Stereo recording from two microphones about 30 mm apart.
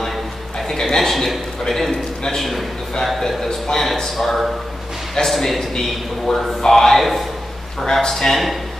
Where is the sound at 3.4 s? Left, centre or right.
Centre.